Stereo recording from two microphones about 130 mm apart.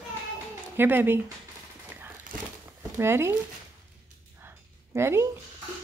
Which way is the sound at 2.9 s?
20° right (ahead or behind).